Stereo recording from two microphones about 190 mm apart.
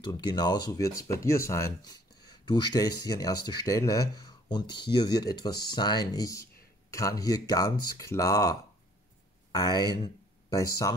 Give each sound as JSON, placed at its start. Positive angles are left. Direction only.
{"t": 0.0, "sound": "speech", "side_deg": 20}